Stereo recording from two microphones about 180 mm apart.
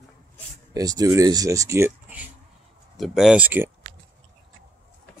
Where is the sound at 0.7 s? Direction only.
20° right (ahead or behind).